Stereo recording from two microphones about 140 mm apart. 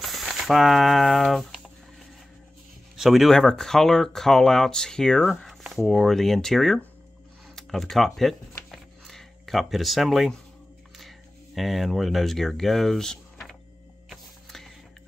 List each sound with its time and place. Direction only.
0.0 s speech: centre (ahead or behind)
3.0 s speech: centre (ahead or behind)
7.5 s a sound: centre (ahead or behind)
11.0 s speech: centre (ahead or behind)
14.0 s music: centre (ahead or behind)